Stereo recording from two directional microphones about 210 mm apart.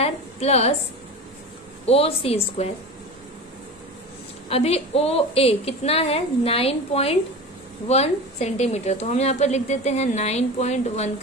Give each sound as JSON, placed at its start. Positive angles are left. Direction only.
{"t": 0.0, "sound": "a woman's voice", "side_deg": 30}
{"t": 1.9, "sound": "a woman's voice", "side_deg": 30}
{"t": 4.5, "sound": "a woman's voice", "side_deg": 30}